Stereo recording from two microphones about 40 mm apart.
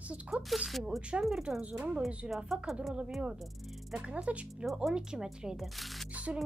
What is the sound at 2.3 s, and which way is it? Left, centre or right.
Speech, centre.